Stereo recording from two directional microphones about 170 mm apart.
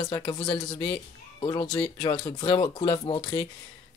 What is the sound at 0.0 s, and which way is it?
Speech, 25° left (ahead or behind).